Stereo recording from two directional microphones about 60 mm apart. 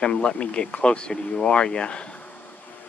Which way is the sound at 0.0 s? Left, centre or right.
Centre.